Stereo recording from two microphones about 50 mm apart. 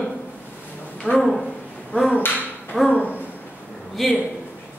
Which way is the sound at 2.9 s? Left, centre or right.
Left.